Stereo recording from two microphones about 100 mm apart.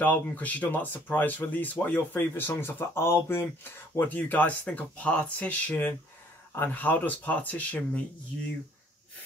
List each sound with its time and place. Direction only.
0.0 s speech: 15° left (ahead or behind)